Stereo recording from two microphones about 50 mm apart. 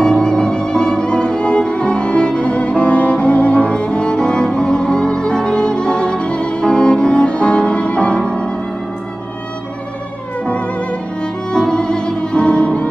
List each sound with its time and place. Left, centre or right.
0.0 s music: centre
10.4 s music: left